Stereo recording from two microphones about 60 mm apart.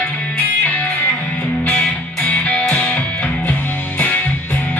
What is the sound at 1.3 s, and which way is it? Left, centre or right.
Music, left.